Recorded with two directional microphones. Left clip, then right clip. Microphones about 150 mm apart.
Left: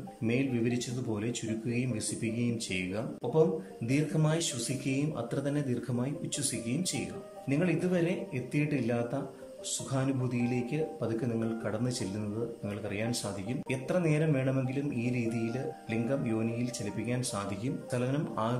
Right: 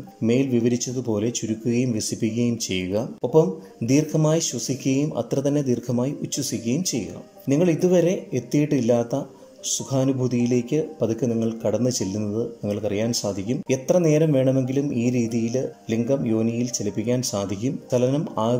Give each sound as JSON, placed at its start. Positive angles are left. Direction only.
{"t": 0.2, "sound": "speech", "side_deg": -40}